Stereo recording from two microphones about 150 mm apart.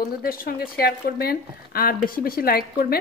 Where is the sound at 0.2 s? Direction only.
80° left.